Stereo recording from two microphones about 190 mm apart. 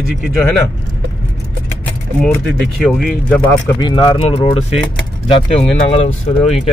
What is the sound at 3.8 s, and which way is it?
Speech, 25° left (ahead or behind).